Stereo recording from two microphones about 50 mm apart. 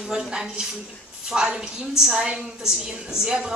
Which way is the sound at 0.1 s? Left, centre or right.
Centre.